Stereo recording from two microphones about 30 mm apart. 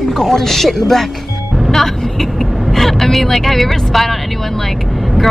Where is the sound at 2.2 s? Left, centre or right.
Centre.